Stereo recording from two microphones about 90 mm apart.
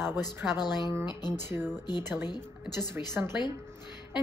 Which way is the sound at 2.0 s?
25° right (ahead or behind).